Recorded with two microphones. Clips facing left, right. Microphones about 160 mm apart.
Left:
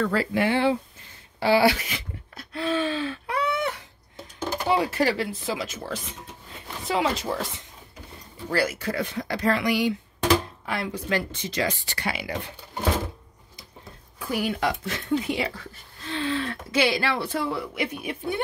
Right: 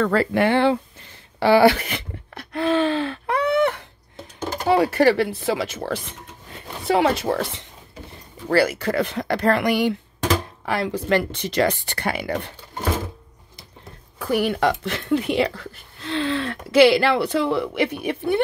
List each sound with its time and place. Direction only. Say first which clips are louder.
0.0 s speech: right 5 dB; 60° right (ahead or behind)
1.4 s a sound: right 5 dB; 55° right (ahead or behind)
4.6 s speech: right 7 dB; 60° right (ahead or behind)
10.6 s speech: right 6 dB; 75° right (ahead or behind); by 12.5 s 60° right (ahead or behind)
14.1 s speech: right 6 dB; 65° right (ahead or behind)